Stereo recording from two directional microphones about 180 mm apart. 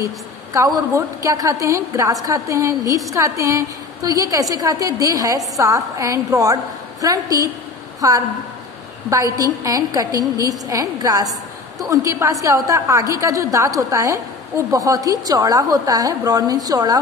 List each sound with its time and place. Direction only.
0.0 s a woman's voice: 15° right (ahead or behind)